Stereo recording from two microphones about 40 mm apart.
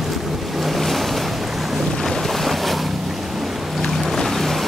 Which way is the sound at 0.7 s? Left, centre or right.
Centre.